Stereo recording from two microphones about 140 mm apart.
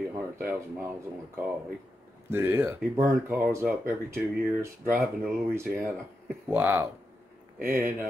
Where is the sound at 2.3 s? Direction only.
15° right (ahead or behind).